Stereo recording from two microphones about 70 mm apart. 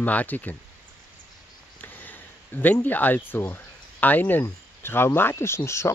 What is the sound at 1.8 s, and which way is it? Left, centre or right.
Speech, left.